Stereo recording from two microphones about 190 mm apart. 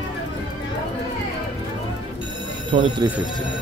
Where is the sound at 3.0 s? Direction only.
20° right (ahead or behind).